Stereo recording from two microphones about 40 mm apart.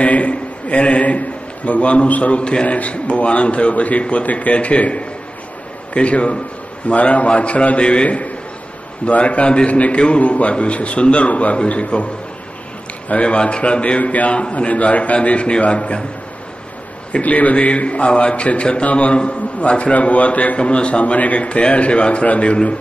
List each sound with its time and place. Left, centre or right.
0.0 s a sound: left
2.0 s a man's voice: left
13.1 s a man's voice: left
17.2 s a man's voice: left